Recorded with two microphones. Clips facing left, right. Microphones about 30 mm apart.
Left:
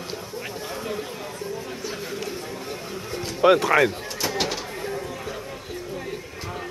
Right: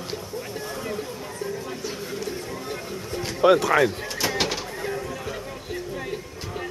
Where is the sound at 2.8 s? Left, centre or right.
Centre.